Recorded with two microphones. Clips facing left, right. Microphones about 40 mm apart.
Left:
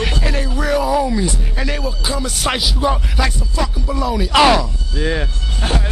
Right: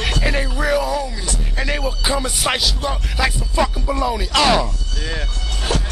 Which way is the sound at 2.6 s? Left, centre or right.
Centre.